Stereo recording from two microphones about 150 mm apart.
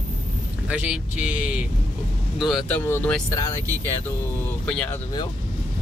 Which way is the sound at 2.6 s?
10° left (ahead or behind).